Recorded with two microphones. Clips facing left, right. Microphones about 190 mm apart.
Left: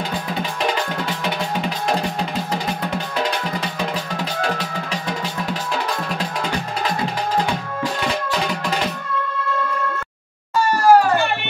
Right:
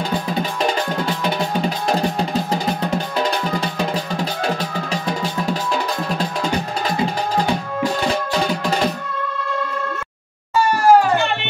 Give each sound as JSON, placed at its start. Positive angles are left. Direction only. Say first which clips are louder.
{"t": 10.5, "sound": "music", "louder": "even", "side_deg": -15}